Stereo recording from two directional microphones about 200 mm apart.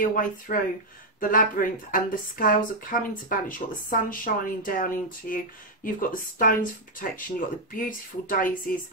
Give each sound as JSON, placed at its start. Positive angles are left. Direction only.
{"t": 0.1, "sound": "speech", "side_deg": 40}